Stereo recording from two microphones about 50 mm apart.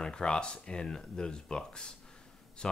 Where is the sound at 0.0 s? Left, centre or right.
Centre.